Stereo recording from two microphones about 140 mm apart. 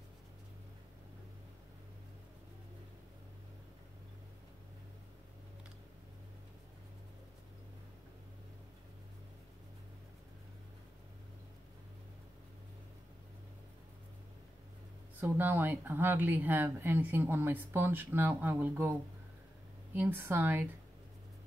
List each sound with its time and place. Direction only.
15.1 s speech: 15° right (ahead or behind)